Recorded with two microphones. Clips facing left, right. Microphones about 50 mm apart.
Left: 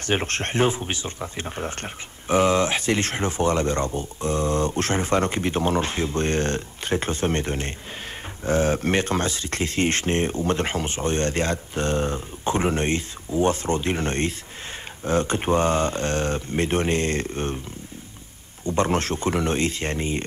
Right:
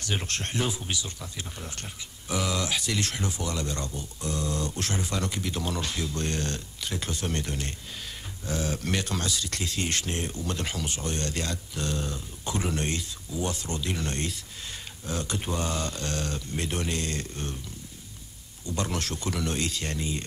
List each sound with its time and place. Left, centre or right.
0.0 s speech: left
18.7 s speech: left